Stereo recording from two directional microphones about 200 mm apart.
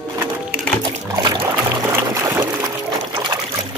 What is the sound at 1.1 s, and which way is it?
Music, 15° right (ahead or behind).